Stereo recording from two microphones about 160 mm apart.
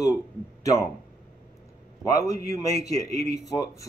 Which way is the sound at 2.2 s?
20° left (ahead or behind).